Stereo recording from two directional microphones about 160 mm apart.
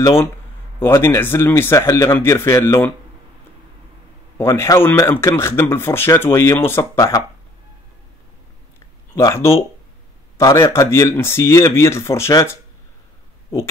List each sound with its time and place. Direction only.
0.7 s speech: 15° left (ahead or behind)
4.4 s speech: 15° left (ahead or behind)
9.1 s speech: 20° left (ahead or behind)